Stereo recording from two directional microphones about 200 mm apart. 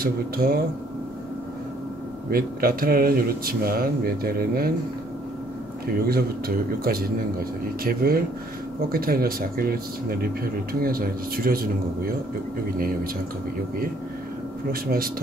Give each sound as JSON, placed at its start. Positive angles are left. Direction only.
{"t": 0.0, "sound": "speech", "side_deg": -50}
{"t": 2.3, "sound": "speech", "side_deg": -45}
{"t": 6.0, "sound": "speech", "side_deg": -50}
{"t": 14.7, "sound": "speech", "side_deg": -50}